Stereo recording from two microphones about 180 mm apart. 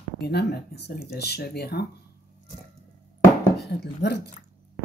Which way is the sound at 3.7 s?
65° left (ahead or behind).